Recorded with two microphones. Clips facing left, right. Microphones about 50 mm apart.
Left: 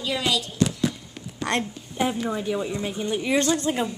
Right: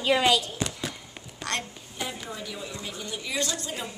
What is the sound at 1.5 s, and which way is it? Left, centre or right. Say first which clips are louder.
A woman's voice: left 6 dB; left.